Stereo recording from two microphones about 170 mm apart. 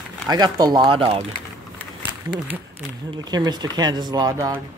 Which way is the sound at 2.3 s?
20° right (ahead or behind).